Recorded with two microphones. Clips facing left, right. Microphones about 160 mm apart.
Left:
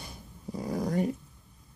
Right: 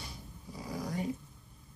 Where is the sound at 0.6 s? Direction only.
55° left (ahead or behind).